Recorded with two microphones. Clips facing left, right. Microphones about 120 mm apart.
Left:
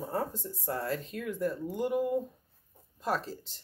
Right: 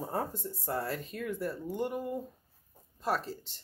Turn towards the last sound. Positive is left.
turn(degrees=0)  # may be behind; listen again after turning